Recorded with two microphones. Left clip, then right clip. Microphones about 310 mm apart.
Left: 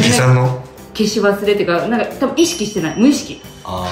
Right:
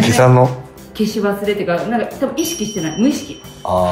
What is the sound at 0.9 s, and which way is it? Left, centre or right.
Speech, centre.